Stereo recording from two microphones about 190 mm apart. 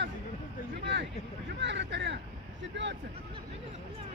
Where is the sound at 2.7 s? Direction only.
65° right (ahead or behind).